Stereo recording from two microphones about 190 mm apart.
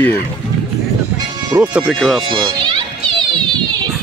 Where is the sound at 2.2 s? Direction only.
25° right (ahead or behind).